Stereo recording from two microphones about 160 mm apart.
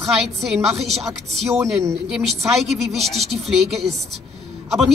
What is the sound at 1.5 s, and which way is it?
Speech, 20° right (ahead or behind).